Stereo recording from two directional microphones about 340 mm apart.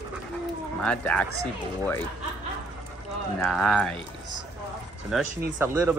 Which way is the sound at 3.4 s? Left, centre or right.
Centre.